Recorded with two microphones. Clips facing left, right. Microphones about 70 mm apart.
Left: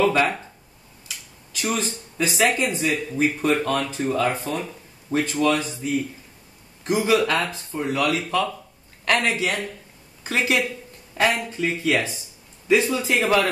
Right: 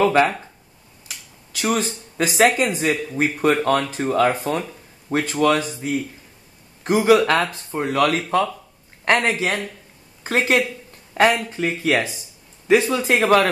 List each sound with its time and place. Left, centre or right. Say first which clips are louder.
0.0 s speech: right 3 dB; right
1.6 s speech: right 4 dB; right
2.8 s speech: right 1 dB; right
7.7 s speech: right 4 dB; right
8.2 s a man's voice: right 3 dB; right